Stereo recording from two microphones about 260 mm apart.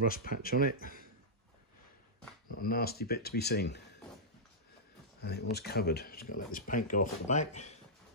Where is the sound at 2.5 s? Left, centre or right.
Left.